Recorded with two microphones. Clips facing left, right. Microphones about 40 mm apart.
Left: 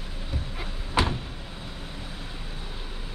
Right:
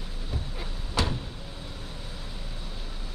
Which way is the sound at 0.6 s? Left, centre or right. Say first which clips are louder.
Left 4 dB; left.